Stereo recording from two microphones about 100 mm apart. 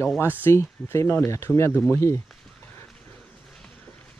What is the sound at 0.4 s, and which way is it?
Speech, 25° left (ahead or behind).